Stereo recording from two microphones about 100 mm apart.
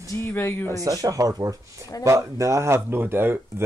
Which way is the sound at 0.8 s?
35° right (ahead or behind).